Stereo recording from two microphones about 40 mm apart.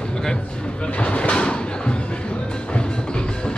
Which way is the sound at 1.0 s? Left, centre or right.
Left.